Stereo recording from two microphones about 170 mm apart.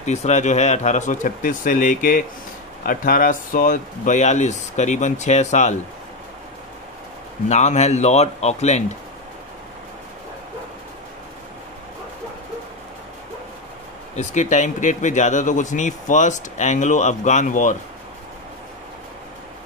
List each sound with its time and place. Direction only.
0.0 s speech: 40° left (ahead or behind)
7.4 s speech: 40° left (ahead or behind)
14.1 s speech: 45° left (ahead or behind)